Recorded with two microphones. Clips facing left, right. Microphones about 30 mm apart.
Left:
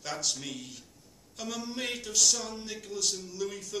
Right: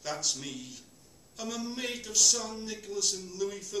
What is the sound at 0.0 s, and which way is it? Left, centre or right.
Speech, centre.